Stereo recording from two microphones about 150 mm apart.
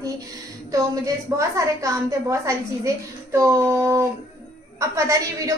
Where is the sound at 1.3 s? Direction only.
20° right (ahead or behind).